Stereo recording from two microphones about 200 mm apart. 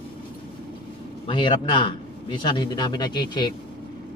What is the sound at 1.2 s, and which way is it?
A man's voice, 25° left (ahead or behind).